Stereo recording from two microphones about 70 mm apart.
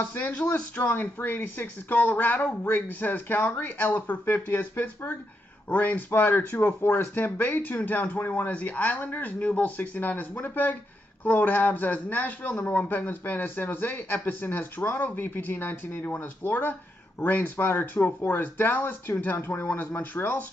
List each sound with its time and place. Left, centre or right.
0.0 s speech: left